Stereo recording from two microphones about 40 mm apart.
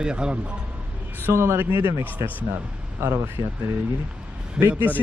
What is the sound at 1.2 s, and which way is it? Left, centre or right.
Speech, right.